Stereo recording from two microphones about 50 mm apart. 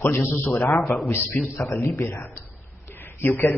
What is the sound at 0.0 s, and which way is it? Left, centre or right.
Speech, left.